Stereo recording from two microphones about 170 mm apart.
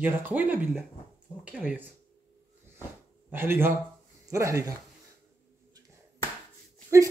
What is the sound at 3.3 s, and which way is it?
Speech, 15° right (ahead or behind).